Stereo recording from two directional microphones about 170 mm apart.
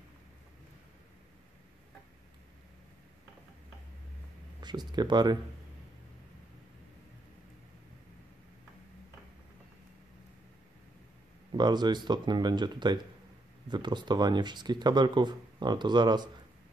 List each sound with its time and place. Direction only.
4.6 s speech: 25° right (ahead or behind)
11.5 s speech: 25° right (ahead or behind)